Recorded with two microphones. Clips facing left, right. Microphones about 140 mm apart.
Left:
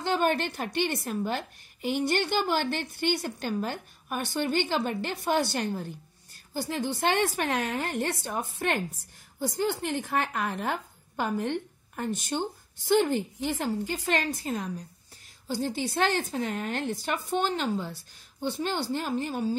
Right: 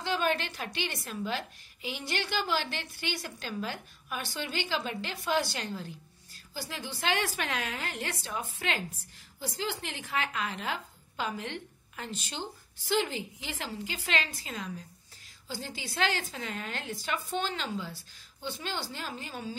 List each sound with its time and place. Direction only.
0.0 s a woman's voice: 55° left (ahead or behind)